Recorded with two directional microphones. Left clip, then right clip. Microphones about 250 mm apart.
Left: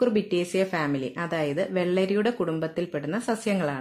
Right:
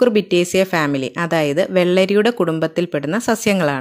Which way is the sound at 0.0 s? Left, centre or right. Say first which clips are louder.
Right 9 dB; right.